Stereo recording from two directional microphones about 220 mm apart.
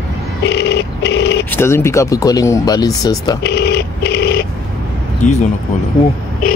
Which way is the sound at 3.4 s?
50° left (ahead or behind).